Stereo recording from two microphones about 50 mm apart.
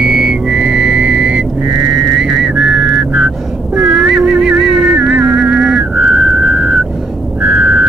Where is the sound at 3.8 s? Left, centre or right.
Centre.